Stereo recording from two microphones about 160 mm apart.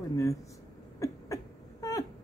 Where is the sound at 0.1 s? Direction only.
20° left (ahead or behind).